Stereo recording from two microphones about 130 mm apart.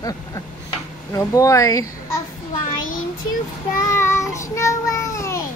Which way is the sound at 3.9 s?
20° left (ahead or behind).